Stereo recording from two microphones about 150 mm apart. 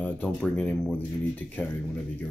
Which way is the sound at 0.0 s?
10° left (ahead or behind).